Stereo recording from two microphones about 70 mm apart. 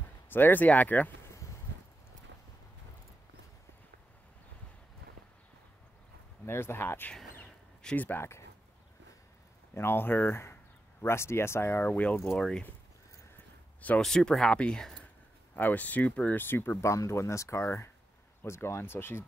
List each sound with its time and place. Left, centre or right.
0.3 s speech: left
1.2 s a sound: left
6.4 s speech: left
8.2 s speech: left
9.8 s speech: left
12.4 s speech: centre
13.7 s speech: left
14.0 s speech: centre
15.5 s speech: left